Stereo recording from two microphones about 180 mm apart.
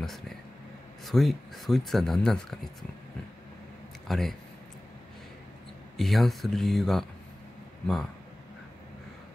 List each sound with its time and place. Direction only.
1.0 s speech: centre (ahead or behind)
4.1 s speech: centre (ahead or behind)
5.9 s speech: centre (ahead or behind)